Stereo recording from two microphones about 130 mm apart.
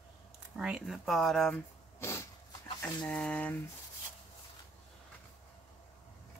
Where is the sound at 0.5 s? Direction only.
5° right (ahead or behind).